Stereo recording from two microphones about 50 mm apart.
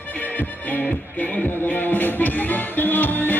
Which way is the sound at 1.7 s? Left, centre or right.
Left.